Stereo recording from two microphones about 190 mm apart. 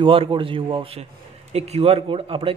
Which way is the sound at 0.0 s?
25° right (ahead or behind).